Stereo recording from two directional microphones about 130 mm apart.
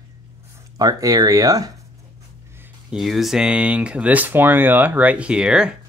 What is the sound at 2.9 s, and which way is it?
Speech, 5° right (ahead or behind).